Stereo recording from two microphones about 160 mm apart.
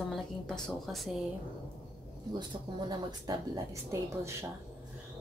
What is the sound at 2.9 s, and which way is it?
Speech, 25° right (ahead or behind).